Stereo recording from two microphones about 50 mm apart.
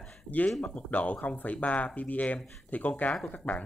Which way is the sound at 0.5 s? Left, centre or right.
Centre.